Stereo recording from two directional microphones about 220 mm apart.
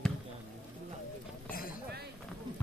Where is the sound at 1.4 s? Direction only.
40° left (ahead or behind).